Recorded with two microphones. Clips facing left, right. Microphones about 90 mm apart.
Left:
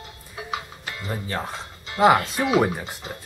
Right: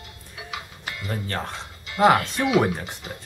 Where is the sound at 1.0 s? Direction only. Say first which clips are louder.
Left 1 dB; 10° left (ahead or behind).